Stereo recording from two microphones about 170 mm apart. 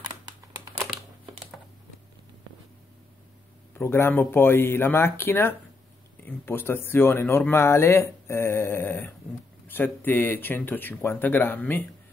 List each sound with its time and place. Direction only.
3.7 s speech: 15° left (ahead or behind)